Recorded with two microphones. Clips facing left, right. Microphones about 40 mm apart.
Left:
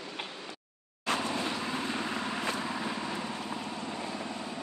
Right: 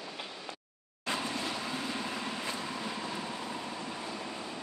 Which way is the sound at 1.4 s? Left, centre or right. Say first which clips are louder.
Left 3 dB; left.